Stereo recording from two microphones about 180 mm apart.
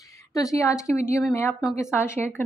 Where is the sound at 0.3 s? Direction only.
20° left (ahead or behind).